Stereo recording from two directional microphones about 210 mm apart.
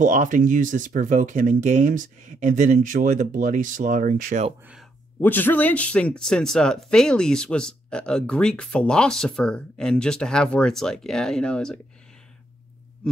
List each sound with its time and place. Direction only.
0.0 s speech: 35° right (ahead or behind)
5.2 s speech: 10° left (ahead or behind)